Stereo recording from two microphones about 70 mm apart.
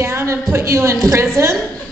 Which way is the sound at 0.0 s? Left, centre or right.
Right.